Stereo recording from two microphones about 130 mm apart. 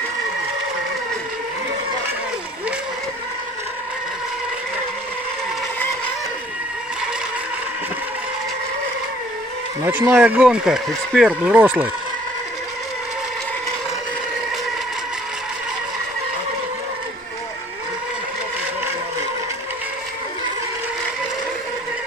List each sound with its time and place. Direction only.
9.8 s speech: 15° right (ahead or behind)
11.5 s speech: 15° right (ahead or behind)